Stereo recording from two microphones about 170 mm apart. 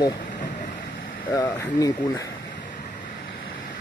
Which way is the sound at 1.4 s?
20° left (ahead or behind).